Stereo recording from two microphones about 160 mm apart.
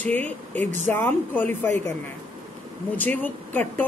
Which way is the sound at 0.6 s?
50° right (ahead or behind).